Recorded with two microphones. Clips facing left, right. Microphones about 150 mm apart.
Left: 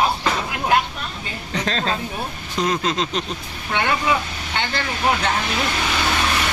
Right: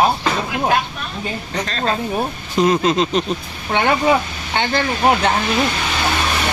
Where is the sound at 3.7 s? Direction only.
45° right (ahead or behind).